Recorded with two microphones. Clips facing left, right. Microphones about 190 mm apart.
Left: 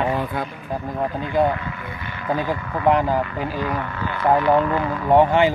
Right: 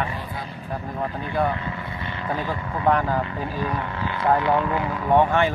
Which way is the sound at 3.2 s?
25° right (ahead or behind).